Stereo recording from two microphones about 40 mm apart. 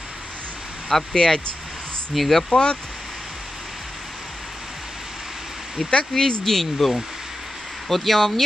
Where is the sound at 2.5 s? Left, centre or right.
Left.